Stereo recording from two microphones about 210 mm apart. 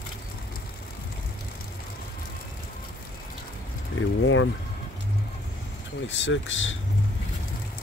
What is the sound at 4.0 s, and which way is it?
Speech, 65° left (ahead or behind).